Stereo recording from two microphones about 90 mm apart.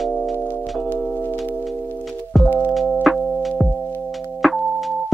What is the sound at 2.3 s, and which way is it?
Music, centre (ahead or behind).